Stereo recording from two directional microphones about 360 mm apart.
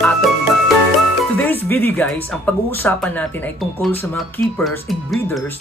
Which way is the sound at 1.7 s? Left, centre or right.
Centre.